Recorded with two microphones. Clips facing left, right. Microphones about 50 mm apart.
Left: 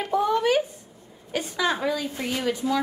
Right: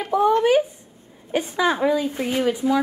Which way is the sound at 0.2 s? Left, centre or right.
Right.